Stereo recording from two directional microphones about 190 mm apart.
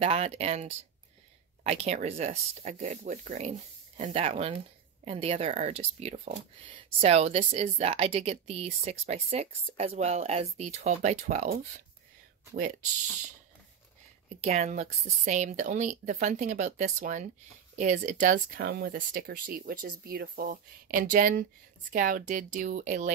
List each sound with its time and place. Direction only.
0.0 s speech: 35° right (ahead or behind)
14.4 s speech: 35° right (ahead or behind)